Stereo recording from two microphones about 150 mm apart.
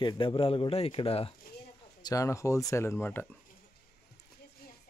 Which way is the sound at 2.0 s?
20° left (ahead or behind).